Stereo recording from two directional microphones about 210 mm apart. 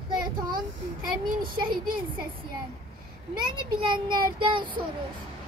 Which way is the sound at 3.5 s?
20° right (ahead or behind).